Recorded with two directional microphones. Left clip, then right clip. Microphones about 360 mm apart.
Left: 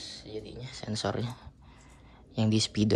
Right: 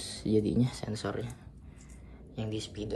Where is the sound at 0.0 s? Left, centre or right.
Centre.